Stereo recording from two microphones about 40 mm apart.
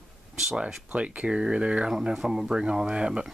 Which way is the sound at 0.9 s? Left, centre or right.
Right.